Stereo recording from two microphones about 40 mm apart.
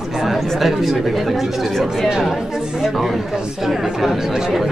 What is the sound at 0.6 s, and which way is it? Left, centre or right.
Speech, centre.